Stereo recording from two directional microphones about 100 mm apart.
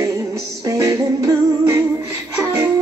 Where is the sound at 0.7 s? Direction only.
35° right (ahead or behind).